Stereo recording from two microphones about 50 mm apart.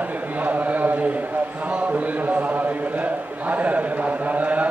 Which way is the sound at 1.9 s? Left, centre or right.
Right.